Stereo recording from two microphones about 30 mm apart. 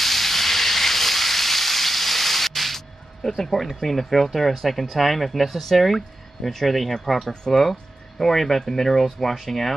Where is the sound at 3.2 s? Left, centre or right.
Centre.